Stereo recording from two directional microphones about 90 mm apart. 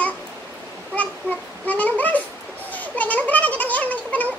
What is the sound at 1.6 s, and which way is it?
Speech, 15° left (ahead or behind).